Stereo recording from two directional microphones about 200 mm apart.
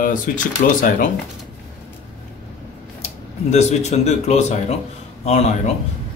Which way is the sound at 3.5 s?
35° left (ahead or behind).